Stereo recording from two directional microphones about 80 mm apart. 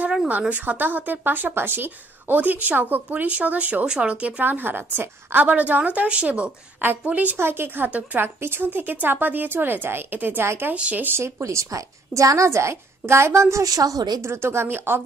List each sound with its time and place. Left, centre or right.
0.3 s a woman's voice: right
10.7 s a woman's voice: centre; by 14.2 s right
14.2 s a woman's voice: right